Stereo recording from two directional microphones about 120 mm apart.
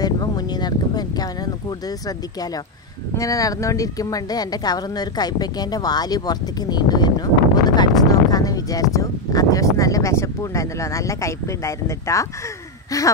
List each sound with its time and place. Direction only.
0.0 s a woman's voice: 35° left (ahead or behind)
3.2 s a woman's voice: 30° left (ahead or behind)